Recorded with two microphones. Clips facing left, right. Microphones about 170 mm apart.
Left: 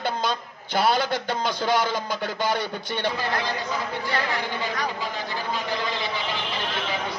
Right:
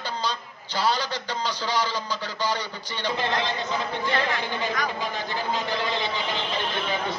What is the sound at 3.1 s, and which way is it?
Speech, 25° right (ahead or behind).